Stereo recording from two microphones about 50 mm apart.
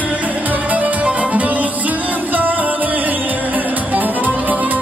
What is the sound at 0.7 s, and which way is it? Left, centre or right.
Music, right.